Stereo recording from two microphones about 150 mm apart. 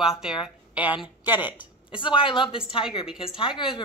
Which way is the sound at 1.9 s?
35° left (ahead or behind).